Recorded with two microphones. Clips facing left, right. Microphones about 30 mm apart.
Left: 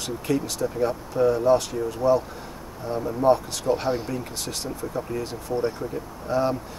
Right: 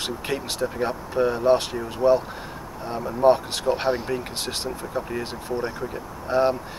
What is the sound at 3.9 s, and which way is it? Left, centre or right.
Speech, right.